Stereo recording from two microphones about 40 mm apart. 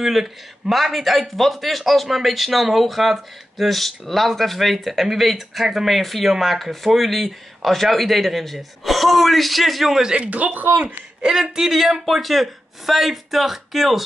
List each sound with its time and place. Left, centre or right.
0.0 s speech: centre
10.1 s speech: right
11.6 s speech: centre